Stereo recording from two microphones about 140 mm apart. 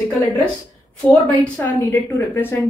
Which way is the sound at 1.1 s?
10° left (ahead or behind).